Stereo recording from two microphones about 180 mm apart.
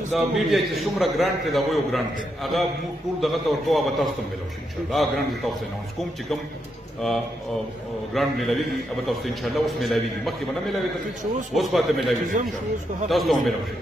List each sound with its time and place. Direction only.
0.1 s a man's voice: centre (ahead or behind)
8.1 s a man's voice: centre (ahead or behind)
12.4 s a man's voice: 45° right (ahead or behind)
13.1 s a man's voice: centre (ahead or behind)